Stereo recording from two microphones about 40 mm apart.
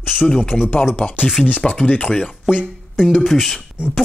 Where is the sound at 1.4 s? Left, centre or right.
Centre.